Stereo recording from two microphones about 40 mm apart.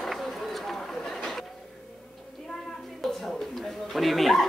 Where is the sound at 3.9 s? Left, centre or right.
Centre.